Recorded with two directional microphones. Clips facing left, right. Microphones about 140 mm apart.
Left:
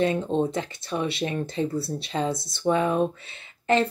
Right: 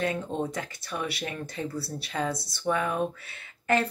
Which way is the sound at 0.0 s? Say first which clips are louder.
Left 6 dB; 25° left (ahead or behind).